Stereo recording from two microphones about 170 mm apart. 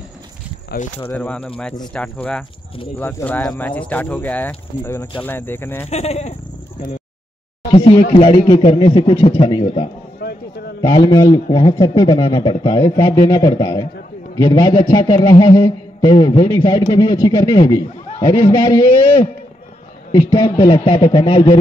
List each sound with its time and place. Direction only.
0.9 s speech: 10° left (ahead or behind)
5.9 s speech: 40° left (ahead or behind)
7.7 s a man's voice: 30° left (ahead or behind)
10.2 s a sound: 70° left (ahead or behind)
10.9 s a man's voice: 25° left (ahead or behind)
20.1 s a man's voice: 30° left (ahead or behind)